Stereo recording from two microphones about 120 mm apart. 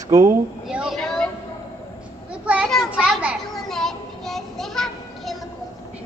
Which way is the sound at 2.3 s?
10° right (ahead or behind).